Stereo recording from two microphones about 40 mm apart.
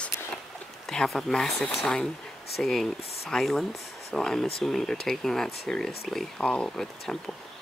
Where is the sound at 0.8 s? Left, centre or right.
Centre.